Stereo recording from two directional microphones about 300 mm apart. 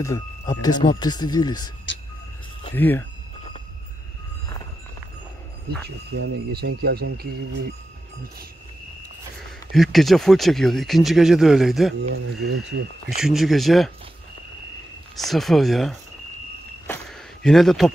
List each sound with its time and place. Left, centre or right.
0.0 s speech: centre
2.7 s speech: centre
5.9 s speech: right
9.7 s speech: centre
12.0 s speech: right
13.2 s speech: centre
15.1 s speech: centre
16.8 s a sound: centre